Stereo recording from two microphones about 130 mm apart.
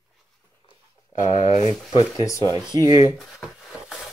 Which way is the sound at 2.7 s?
30° right (ahead or behind).